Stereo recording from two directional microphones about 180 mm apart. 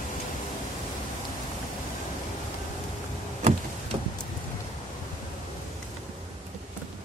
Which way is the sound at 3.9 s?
25° right (ahead or behind).